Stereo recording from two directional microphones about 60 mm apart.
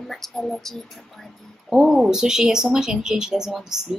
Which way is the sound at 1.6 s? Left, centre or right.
Centre.